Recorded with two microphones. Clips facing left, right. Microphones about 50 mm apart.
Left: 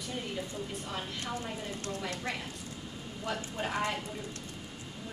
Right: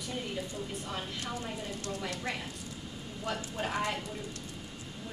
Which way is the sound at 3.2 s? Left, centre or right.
Centre.